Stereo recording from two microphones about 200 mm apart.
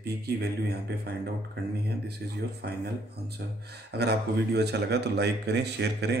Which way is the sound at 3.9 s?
55° right (ahead or behind).